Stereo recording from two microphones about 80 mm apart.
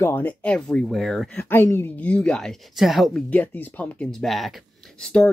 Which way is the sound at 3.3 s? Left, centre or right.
Left.